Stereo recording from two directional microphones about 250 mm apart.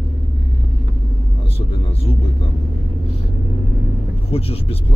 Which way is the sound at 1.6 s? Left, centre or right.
Left.